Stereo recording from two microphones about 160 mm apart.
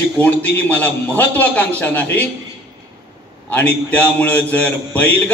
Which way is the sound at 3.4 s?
10° left (ahead or behind).